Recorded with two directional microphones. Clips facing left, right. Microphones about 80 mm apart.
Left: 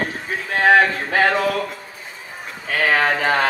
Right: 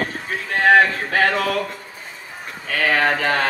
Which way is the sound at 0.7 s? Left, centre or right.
Centre.